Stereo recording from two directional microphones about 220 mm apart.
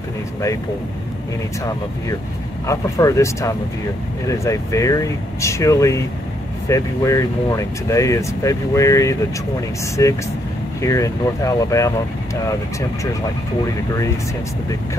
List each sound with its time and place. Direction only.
2.6 s speech: 15° left (ahead or behind)